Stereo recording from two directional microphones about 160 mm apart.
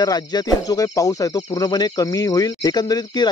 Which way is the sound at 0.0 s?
25° left (ahead or behind).